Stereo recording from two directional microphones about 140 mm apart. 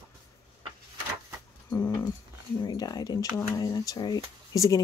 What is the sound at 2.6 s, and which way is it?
Speech, 30° left (ahead or behind).